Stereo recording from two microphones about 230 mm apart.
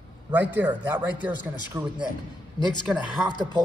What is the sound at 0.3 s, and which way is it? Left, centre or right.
A man's voice, centre.